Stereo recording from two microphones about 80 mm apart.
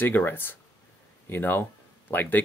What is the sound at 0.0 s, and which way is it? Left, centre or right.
Speech, left.